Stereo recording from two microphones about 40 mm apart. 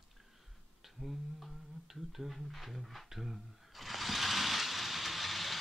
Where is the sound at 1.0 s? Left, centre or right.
Right.